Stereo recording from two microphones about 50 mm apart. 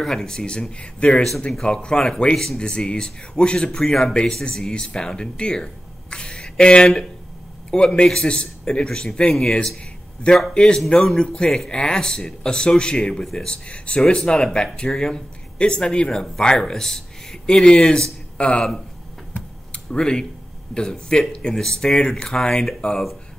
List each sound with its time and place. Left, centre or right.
0.0 s speech: centre
13.5 s speech: left
18.4 s speech: left
19.3 s a sound: left
20.0 s speech: centre